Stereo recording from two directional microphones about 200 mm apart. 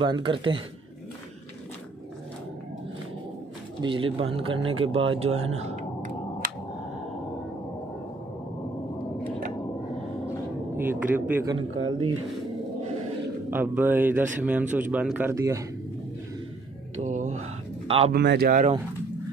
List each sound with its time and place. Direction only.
0.0 s speech: 25° right (ahead or behind)
3.8 s speech: 25° right (ahead or behind)
10.8 s speech: 10° right (ahead or behind)
11.5 s a man's voice: 90° right
13.5 s speech: 10° right (ahead or behind)
17.0 s mantra: 40° right (ahead or behind)
17.8 s speech: 30° right (ahead or behind)
18.1 s speech: 55° right (ahead or behind)